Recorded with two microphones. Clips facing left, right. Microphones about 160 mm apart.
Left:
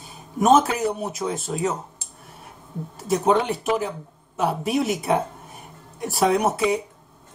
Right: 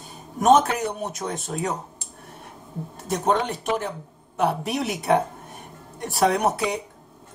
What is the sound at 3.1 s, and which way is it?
Speech, 5° left (ahead or behind).